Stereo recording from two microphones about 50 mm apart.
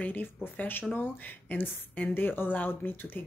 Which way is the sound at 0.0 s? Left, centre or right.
Left.